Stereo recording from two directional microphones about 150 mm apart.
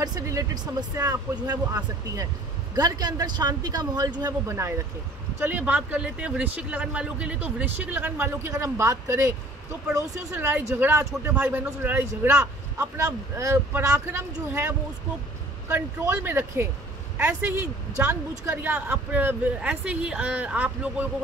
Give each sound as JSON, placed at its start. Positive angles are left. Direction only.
{"t": 0.0, "sound": "speech", "side_deg": -25}
{"t": 15.7, "sound": "speech", "side_deg": -15}
{"t": 17.6, "sound": "a woman's voice", "side_deg": -20}